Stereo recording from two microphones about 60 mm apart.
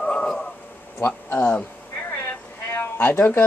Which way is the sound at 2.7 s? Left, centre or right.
Left.